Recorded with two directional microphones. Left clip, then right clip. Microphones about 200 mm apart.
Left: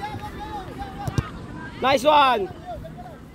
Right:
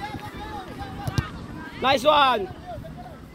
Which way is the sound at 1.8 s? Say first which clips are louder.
Left 2 dB; 55° left (ahead or behind).